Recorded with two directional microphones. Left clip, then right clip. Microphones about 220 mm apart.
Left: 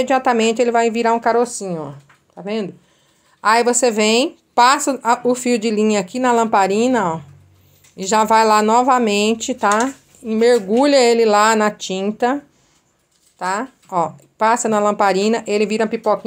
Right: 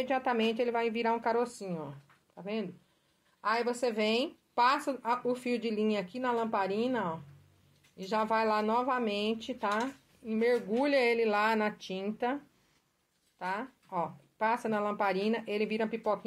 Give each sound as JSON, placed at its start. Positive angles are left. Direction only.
{"t": 0.0, "sound": "speech", "side_deg": 20}
{"t": 3.3, "sound": "speech", "side_deg": 30}
{"t": 13.4, "sound": "speech", "side_deg": 20}